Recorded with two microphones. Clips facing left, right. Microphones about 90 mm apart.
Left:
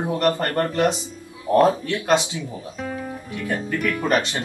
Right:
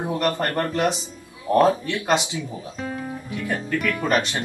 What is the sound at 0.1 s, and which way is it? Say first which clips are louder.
Speech: left 3 dB; 25° left (ahead or behind).